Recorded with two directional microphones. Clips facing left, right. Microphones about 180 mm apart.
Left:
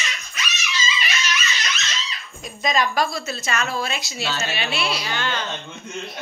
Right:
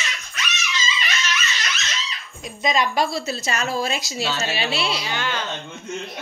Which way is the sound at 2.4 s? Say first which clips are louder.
Even; 25° right (ahead or behind).